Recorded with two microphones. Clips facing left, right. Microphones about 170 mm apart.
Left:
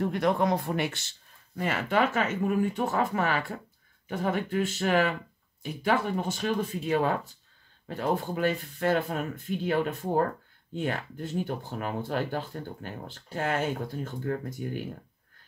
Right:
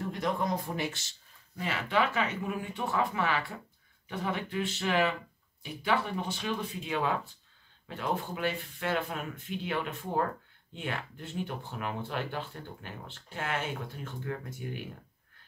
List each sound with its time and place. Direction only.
0.0 s speech: 65° left (ahead or behind)
1.6 s speech: 50° left (ahead or behind)